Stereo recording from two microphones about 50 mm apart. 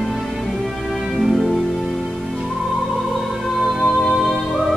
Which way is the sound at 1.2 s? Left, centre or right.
Centre.